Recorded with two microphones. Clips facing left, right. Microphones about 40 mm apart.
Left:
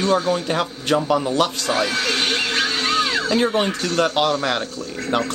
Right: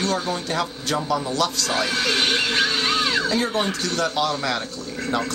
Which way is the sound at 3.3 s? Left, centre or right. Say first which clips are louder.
Left 4 dB; left.